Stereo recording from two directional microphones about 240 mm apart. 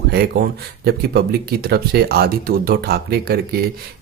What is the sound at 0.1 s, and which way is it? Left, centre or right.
Speech, right.